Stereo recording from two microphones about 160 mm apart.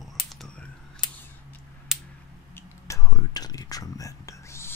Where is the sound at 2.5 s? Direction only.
20° left (ahead or behind).